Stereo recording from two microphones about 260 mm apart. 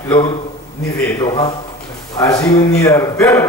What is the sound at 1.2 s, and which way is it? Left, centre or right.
A man's voice, centre.